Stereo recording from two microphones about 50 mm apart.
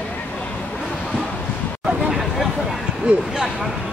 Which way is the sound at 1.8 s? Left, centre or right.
Centre.